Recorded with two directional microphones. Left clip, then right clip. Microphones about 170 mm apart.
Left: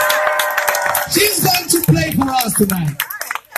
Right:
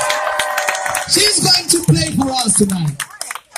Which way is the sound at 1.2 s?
60° right (ahead or behind).